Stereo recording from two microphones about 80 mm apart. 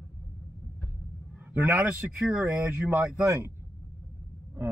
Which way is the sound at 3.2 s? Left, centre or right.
Right.